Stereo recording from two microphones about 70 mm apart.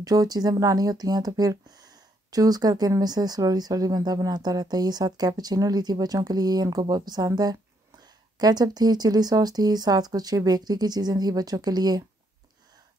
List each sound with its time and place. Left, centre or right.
0.0 s speech: right